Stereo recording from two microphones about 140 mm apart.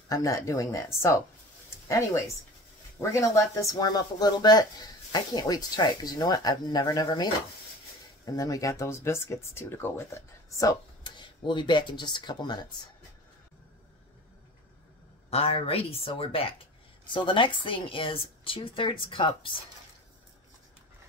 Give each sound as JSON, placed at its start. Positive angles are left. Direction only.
{"t": 0.1, "sound": "speech", "side_deg": 25}
{"t": 8.3, "sound": "speech", "side_deg": 25}
{"t": 15.2, "sound": "speech", "side_deg": 45}